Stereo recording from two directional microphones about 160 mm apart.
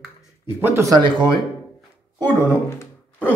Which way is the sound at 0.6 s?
15° right (ahead or behind).